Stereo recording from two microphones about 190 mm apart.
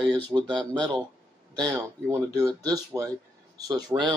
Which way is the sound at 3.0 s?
15° right (ahead or behind).